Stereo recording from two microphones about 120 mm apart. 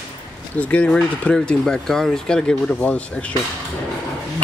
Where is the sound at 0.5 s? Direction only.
10° left (ahead or behind).